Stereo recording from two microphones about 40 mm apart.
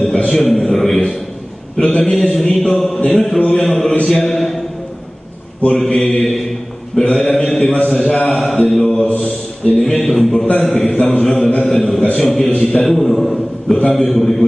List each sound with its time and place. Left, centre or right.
0.1 s a man's voice: centre
3.3 s mantra: centre
3.6 s a man's voice: centre
4.0 s mantra: centre
5.8 s a man's voice: centre
8.9 s mantra: left
9.8 s a man's voice: centre
12.2 s a man's voice: centre